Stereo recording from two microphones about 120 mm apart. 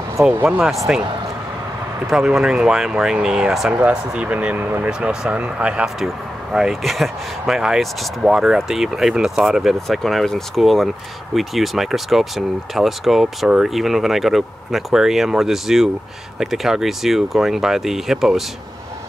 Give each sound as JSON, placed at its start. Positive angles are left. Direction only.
{"t": 0.3, "sound": "speech", "side_deg": -15}
{"t": 2.0, "sound": "speech", "side_deg": -5}